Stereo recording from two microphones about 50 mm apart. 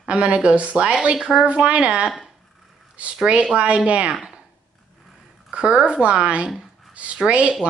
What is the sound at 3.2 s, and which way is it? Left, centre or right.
Speech, right.